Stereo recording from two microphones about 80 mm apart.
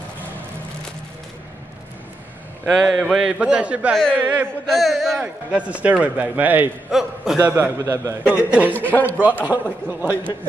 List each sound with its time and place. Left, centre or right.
2.7 s a man's voice: centre
4.6 s a man's voice: centre
5.2 s speech: centre
6.9 s a man's voice: centre
7.3 s speech: right
8.2 s speech: centre
8.7 s a man's voice: left
9.2 s speech: right